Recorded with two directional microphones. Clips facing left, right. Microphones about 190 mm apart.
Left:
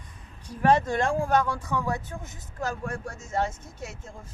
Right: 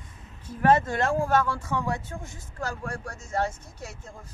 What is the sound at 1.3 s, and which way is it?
Speech, 15° left (ahead or behind).